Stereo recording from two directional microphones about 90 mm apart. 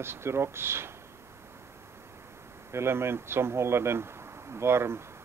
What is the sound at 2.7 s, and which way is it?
Speech, 30° right (ahead or behind).